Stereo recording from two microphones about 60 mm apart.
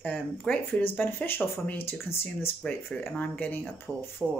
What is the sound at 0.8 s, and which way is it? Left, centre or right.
Speech, left.